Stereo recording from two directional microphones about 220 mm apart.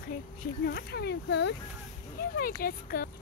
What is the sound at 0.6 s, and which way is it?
Speech, 50° left (ahead or behind).